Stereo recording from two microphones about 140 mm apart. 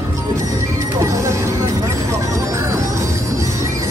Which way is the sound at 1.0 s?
20° right (ahead or behind).